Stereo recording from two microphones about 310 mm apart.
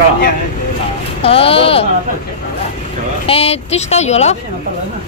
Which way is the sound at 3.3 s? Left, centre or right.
Centre.